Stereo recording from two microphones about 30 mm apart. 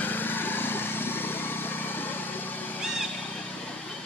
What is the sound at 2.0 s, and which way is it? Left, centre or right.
Vehicle, left.